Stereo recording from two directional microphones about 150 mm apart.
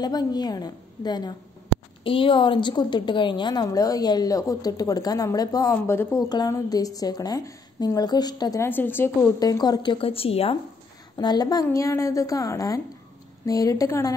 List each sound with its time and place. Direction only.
0.0 s a woman's voice: 25° left (ahead or behind)
6.2 s a woman's voice: 25° left (ahead or behind)
9.4 s a woman's voice: 25° left (ahead or behind)
11.1 s a woman's voice: 25° left (ahead or behind)